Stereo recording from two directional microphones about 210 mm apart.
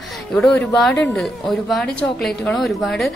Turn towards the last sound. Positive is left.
turn(degrees=0)  # may be behind; listen again after turning